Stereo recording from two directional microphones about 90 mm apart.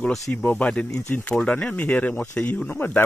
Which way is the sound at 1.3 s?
10° left (ahead or behind).